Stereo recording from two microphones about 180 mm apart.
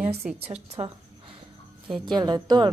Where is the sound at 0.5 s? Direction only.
30° right (ahead or behind).